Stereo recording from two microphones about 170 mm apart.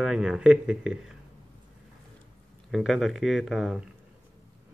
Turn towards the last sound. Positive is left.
turn(degrees=0)  # may be behind; listen again after turning